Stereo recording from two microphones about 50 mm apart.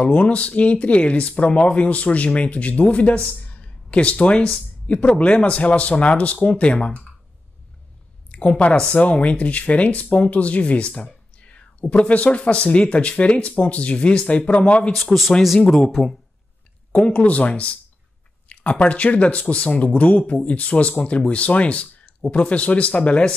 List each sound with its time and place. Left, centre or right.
0.0 s speech: left
8.3 s a woman's voice: left
15.0 s a man's voice: centre
16.9 s speech: left